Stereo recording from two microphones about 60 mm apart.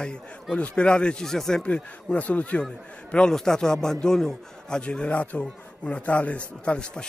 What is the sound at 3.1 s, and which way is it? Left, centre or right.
Speech, centre.